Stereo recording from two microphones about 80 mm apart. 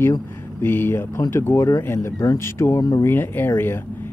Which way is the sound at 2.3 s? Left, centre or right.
Left.